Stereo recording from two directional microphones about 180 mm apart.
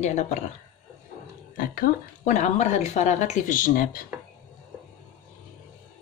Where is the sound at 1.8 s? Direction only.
40° left (ahead or behind).